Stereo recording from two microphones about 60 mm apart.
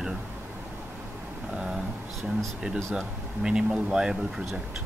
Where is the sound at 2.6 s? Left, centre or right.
Centre.